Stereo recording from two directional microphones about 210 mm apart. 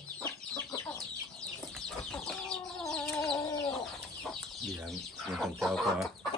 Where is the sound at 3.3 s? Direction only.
20° left (ahead or behind).